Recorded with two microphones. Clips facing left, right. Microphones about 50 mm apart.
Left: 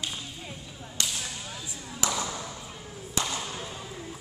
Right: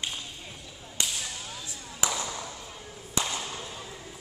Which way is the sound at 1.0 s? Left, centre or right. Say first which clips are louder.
Even; right.